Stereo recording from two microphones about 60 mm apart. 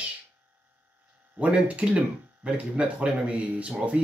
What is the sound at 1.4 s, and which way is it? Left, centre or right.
Speech, right.